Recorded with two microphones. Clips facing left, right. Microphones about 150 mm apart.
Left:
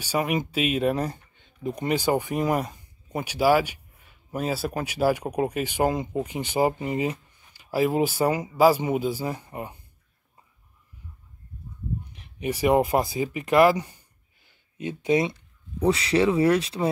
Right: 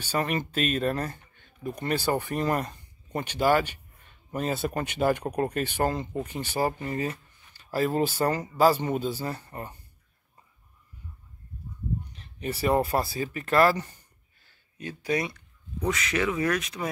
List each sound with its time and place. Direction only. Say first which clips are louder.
0.0 s speech: left 3 dB; 10° left (ahead or behind)
12.2 s speech: left 6 dB; 15° left (ahead or behind); by 16.9 s 30° left (ahead or behind)